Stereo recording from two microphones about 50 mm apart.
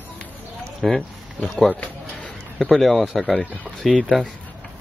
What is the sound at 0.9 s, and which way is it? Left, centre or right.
Speech, centre.